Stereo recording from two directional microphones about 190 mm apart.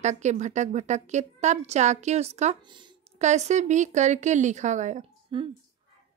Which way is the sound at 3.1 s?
35° right (ahead or behind).